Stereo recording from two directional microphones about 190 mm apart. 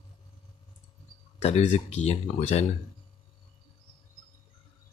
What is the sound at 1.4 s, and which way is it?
Speech, 35° left (ahead or behind).